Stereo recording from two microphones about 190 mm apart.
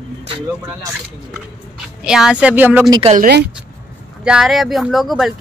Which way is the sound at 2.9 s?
25° right (ahead or behind).